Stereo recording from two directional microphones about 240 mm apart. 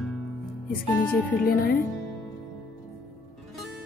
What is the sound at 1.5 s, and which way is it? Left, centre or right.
Speech, left.